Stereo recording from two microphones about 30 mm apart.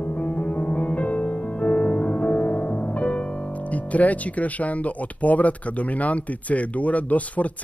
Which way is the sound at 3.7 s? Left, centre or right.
Left.